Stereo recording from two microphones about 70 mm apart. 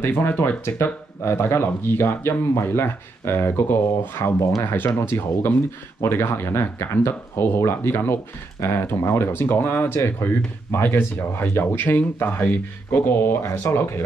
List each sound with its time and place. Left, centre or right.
0.0 s speech: left
0.7 s speech: left